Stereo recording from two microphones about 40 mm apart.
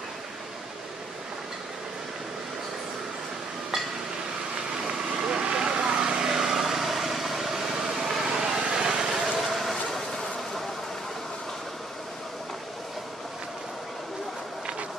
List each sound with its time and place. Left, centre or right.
4.8 s vehicle: centre
6.3 s vehicle: centre
9.5 s a sound: centre